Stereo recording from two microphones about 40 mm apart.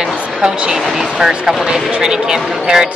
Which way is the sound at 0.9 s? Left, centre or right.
Centre.